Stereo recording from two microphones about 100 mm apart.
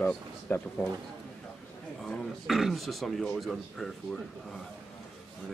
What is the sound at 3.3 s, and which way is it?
Speech, centre (ahead or behind).